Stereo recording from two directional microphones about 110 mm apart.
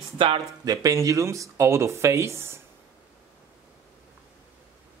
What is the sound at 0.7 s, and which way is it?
Speech, 30° right (ahead or behind).